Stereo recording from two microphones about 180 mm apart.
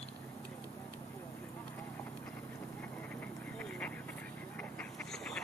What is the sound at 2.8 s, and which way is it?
Dog, 5° left (ahead or behind).